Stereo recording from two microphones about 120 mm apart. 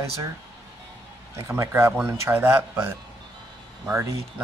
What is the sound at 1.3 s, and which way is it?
Speech, 25° right (ahead or behind).